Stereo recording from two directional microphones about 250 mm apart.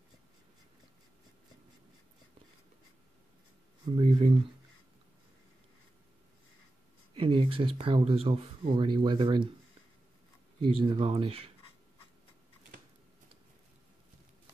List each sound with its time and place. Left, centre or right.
3.9 s speech: right
7.2 s speech: right
10.6 s speech: centre